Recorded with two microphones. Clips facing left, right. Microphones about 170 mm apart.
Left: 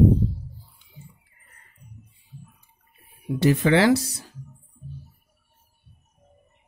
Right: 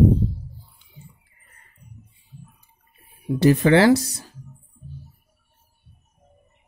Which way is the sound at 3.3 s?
40° right (ahead or behind).